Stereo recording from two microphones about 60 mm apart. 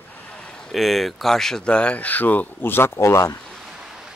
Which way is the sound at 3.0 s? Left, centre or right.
Left.